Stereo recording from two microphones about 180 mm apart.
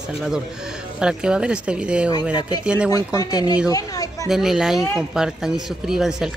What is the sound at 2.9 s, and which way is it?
Speech, 20° left (ahead or behind).